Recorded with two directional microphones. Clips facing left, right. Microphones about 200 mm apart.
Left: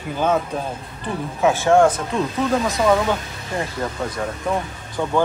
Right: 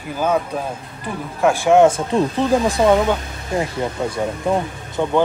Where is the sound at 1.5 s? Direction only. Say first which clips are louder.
Right 3 dB; 15° right (ahead or behind).